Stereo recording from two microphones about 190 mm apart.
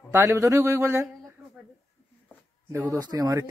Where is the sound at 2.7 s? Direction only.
20° right (ahead or behind).